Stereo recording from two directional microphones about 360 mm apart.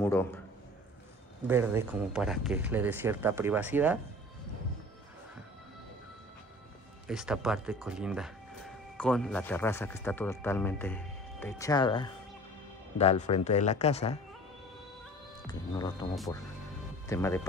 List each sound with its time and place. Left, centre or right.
0.0 s speech: centre
1.5 s speech: centre
7.1 s speech: centre
15.4 s speech: centre
17.1 s speech: centre